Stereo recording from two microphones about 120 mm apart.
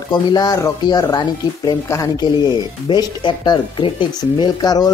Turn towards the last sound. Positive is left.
turn(degrees=35)  # may be behind; listen again after turning